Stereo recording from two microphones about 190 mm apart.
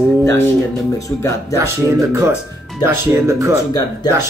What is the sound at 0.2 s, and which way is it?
Guitar, 15° left (ahead or behind).